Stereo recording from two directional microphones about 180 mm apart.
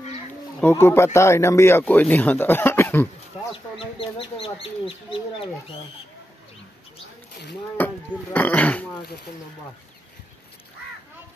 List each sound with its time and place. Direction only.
0.6 s speech: 15° left (ahead or behind)
4.0 s speech: 30° left (ahead or behind)
7.7 s speech: 10° left (ahead or behind)